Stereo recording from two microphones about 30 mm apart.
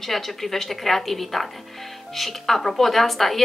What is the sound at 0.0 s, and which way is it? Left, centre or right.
A woman's voice, centre.